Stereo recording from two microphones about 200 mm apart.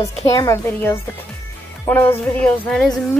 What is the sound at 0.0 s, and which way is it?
A woman's voice, 15° left (ahead or behind).